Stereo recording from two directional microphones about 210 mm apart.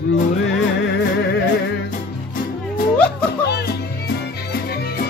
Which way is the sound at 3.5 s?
50° left (ahead or behind).